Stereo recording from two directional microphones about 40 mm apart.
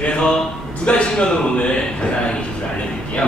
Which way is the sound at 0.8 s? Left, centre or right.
Left.